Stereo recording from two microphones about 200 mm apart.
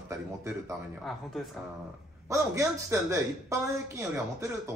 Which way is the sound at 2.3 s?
15° right (ahead or behind).